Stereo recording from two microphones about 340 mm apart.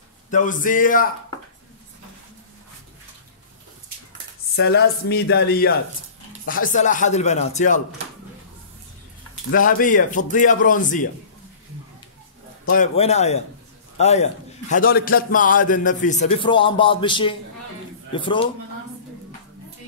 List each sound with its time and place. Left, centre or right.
0.3 s a man's voice: left
4.6 s a man's voice: left
9.5 s a man's voice: left
12.7 s a man's voice: centre